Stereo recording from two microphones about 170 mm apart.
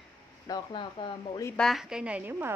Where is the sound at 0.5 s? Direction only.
25° left (ahead or behind).